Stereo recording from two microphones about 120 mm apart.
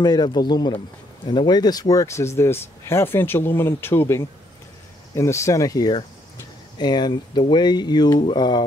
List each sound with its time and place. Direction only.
0.0 s speech: 35° left (ahead or behind)